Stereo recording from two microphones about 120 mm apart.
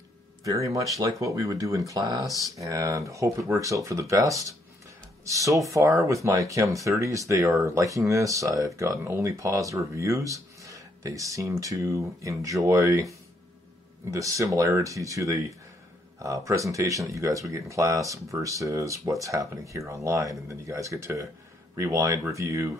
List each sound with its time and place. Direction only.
0.4 s speech: 25° right (ahead or behind)
14.1 s speech: 25° right (ahead or behind)